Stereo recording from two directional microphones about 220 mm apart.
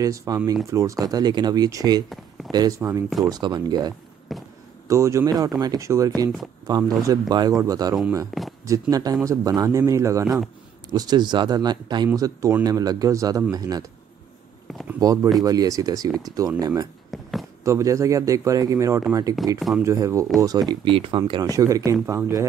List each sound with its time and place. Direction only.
0.0 s speech: 15° right (ahead or behind)
4.3 s basketball bounce: centre (ahead or behind)
4.8 s speech: 15° right (ahead or behind)
14.7 s a sound: centre (ahead or behind)
15.4 s speech: 15° right (ahead or behind)
17.1 s a sound: centre (ahead or behind)
17.6 s speech: 15° right (ahead or behind)
19.4 s speech: centre (ahead or behind)
19.8 s speech: 10° right (ahead or behind)